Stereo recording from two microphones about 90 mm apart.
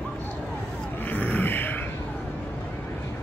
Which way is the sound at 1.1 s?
20° left (ahead or behind).